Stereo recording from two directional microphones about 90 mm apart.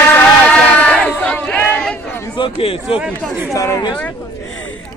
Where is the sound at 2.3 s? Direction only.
85° left.